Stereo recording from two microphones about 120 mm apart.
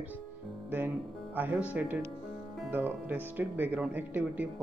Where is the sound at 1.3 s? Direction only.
15° right (ahead or behind).